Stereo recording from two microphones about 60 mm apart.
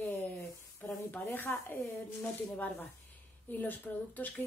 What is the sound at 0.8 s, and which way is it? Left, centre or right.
Speech, left.